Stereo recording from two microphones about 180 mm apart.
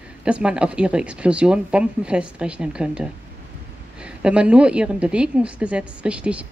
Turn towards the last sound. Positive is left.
turn(degrees=-5)  # may be behind; listen again after turning